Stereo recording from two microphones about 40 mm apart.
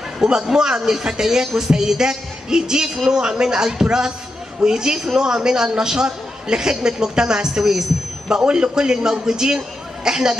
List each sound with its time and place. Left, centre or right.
0.2 s a woman's voice: centre